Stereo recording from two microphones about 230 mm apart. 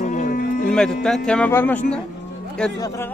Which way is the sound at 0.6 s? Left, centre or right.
Centre.